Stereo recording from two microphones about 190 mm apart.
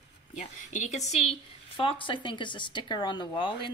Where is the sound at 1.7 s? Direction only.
25° left (ahead or behind).